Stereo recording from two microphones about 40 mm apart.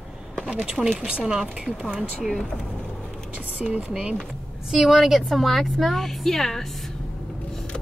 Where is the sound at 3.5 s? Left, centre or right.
Right.